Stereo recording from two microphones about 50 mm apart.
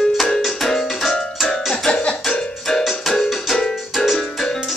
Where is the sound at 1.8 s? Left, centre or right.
Centre.